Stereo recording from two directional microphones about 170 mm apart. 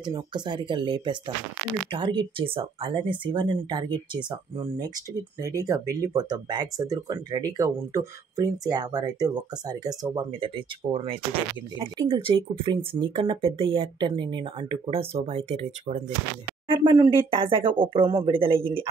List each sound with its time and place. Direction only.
0.0 s speech: 25° right (ahead or behind)
16.6 s speech: 25° right (ahead or behind)